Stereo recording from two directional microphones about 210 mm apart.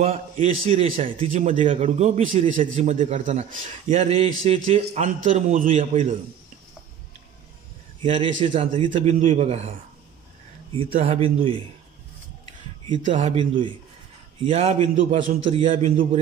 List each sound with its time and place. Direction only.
0.0 s a man's voice: 30° right (ahead or behind)
8.0 s a man's voice: 25° right (ahead or behind)
10.9 s a man's voice: 30° right (ahead or behind)
13.0 s a man's voice: 35° right (ahead or behind)